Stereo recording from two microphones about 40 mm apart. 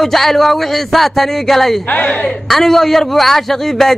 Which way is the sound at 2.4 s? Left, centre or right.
Centre.